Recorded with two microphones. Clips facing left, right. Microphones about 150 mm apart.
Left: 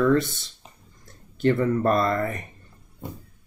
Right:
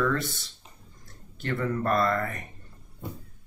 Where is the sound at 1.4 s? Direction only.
25° left (ahead or behind).